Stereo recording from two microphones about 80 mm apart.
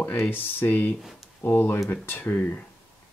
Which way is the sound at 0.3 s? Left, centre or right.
Left.